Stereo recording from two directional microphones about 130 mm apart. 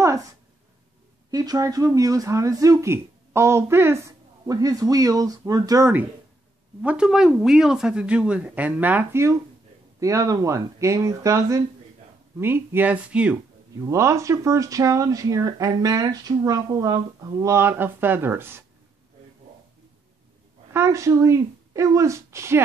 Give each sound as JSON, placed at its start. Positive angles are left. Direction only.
{"t": 1.3, "sound": "speech", "side_deg": -30}
{"t": 6.8, "sound": "speech", "side_deg": -10}
{"t": 13.7, "sound": "speech", "side_deg": -25}
{"t": 20.7, "sound": "speech", "side_deg": -20}